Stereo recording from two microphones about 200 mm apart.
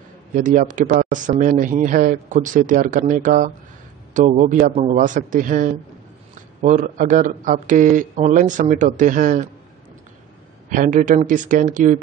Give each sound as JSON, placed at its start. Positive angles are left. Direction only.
{"t": 0.3, "sound": "speech", "side_deg": -40}
{"t": 10.7, "sound": "speech", "side_deg": -40}